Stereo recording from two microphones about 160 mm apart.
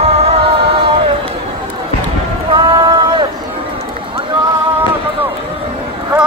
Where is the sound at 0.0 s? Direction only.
40° right (ahead or behind).